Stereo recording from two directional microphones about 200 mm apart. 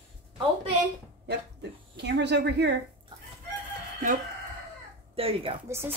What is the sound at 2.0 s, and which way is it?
Speech, 60° right (ahead or behind).